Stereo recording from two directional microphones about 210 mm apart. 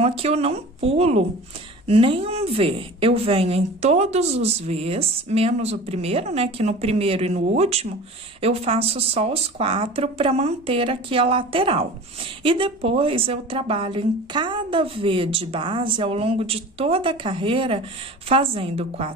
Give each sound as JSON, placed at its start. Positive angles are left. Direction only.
{"t": 0.0, "sound": "a woman's voice", "side_deg": -30}